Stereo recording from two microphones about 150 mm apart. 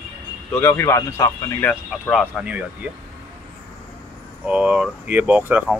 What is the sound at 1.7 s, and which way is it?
Speech, centre (ahead or behind).